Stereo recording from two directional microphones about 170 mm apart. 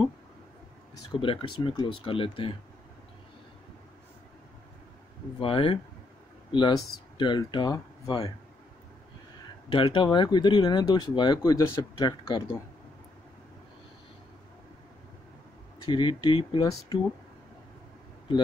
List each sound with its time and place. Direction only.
1.2 s speech: 30° left (ahead or behind)
5.4 s speech: 30° left (ahead or behind)
7.2 s speech: 25° left (ahead or behind)
9.7 s speech: 30° left (ahead or behind)
15.8 s speech: 25° left (ahead or behind)